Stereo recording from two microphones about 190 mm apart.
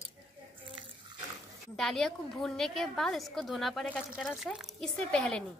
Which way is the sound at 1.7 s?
Centre (ahead or behind).